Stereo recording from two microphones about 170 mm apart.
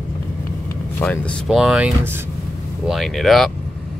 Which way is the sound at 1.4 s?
5° right (ahead or behind).